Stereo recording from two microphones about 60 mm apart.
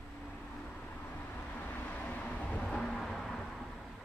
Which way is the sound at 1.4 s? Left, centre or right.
Left.